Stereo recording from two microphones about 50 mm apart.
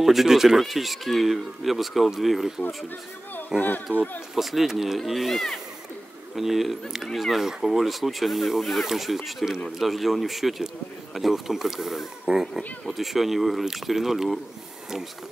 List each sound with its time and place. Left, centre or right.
0.0 s speech: centre
3.9 s speech: left
4.4 s speech: centre